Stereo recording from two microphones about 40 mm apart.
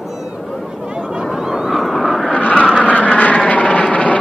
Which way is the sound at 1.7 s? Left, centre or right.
Centre.